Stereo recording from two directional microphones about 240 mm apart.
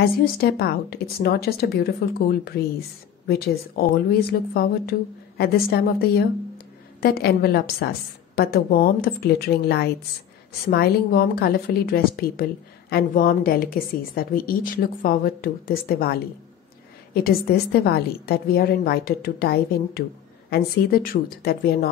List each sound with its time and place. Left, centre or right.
0.0 s a woman's voice: left